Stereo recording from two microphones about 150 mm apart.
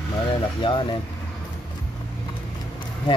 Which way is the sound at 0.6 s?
30° left (ahead or behind).